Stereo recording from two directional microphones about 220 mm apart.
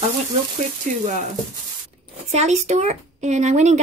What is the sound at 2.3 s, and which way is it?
Speech, 30° right (ahead or behind).